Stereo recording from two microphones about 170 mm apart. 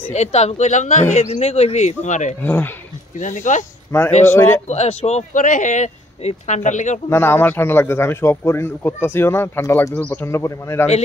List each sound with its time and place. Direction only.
0.1 s speech: 40° left (ahead or behind)
2.4 s a man's voice: 10° left (ahead or behind)
3.2 s speech: 45° left (ahead or behind)
3.9 s a man's voice: 15° left (ahead or behind)
4.6 s speech: 40° left (ahead or behind)
7.1 s a man's voice: 15° left (ahead or behind)